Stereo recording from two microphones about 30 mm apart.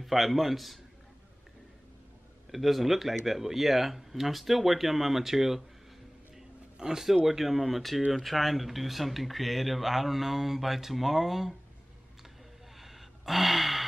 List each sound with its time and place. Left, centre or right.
0.0 s speech: centre
2.5 s speech: centre
6.8 s speech: centre
12.7 s gasp: centre